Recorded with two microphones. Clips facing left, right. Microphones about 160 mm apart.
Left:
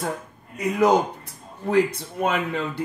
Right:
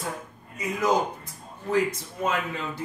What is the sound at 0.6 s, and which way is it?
Speech, 65° left (ahead or behind).